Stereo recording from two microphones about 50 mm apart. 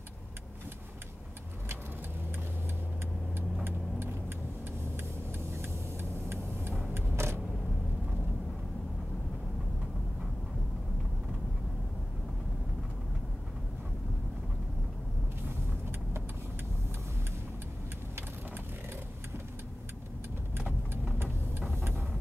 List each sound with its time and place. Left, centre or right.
6.2 s vehicle: right
21.2 s vehicle: right